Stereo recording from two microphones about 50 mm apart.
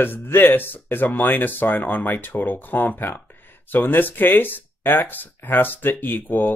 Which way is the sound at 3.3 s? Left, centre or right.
Left.